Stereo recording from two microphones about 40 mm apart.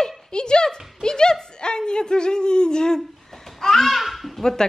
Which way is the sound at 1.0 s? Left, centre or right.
Centre.